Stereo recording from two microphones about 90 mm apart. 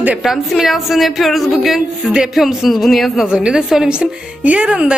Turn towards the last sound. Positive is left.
turn(degrees=-10)  # may be behind; listen again after turning